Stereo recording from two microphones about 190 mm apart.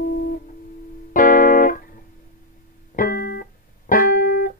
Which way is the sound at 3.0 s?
45° left (ahead or behind).